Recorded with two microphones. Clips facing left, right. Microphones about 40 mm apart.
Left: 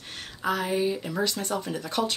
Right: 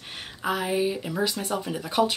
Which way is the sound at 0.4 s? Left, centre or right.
Centre.